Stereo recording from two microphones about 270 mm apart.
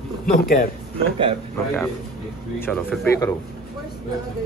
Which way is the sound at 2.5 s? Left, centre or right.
Centre.